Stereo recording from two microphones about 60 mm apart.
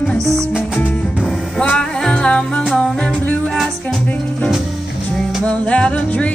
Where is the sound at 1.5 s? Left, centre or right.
Centre.